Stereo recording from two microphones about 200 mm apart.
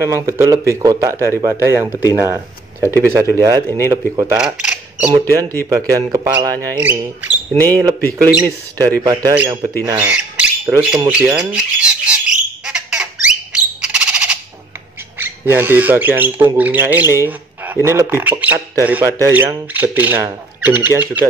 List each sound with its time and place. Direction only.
0.0 s speech: 15° right (ahead or behind)
5.3 s speech: 15° right (ahead or behind)
8.4 s speech: 15° right (ahead or behind)
12.6 s squawk: 5° right (ahead or behind)
15.1 s speech: 10° right (ahead or behind)